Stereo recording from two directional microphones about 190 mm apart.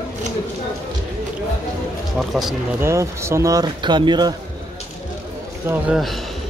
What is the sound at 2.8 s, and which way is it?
Speech, 15° right (ahead or behind).